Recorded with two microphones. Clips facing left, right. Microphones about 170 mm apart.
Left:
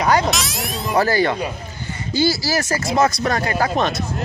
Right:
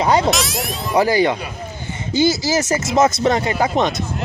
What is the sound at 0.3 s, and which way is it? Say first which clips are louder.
Speech: right 3 dB; centre (ahead or behind).